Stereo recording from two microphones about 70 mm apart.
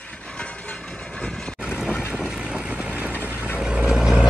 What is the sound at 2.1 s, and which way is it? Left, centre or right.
Vehicle, centre.